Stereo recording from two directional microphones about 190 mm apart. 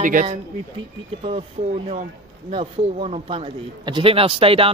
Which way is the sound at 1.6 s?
35° right (ahead or behind).